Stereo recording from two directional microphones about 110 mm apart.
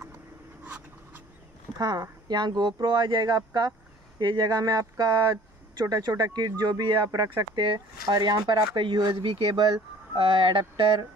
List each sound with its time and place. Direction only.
0.7 s writing: 15° right (ahead or behind)
1.8 s speech: 40° right (ahead or behind)
10.1 s speech: 55° right (ahead or behind)